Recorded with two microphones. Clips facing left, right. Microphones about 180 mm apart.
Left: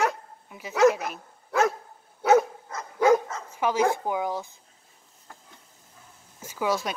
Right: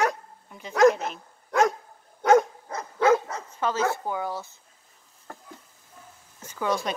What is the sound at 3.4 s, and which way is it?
Speech, 10° left (ahead or behind).